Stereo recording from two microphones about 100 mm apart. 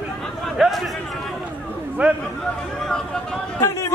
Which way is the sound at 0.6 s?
5° right (ahead or behind).